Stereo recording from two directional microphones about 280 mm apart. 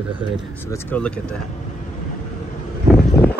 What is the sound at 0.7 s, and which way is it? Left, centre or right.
Speech, centre.